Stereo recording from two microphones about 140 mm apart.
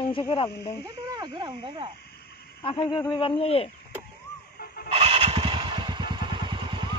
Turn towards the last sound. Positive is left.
turn(degrees=-35)  # may be behind; listen again after turning